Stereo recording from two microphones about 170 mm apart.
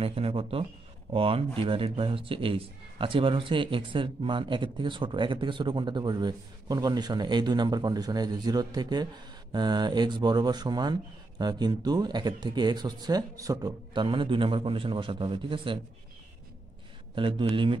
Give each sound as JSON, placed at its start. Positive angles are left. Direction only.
{"t": 0.0, "sound": "a man's voice", "side_deg": -35}
{"t": 17.1, "sound": "a man's voice", "side_deg": -30}